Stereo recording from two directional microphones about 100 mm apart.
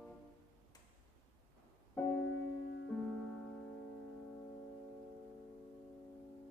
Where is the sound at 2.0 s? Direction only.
20° left (ahead or behind).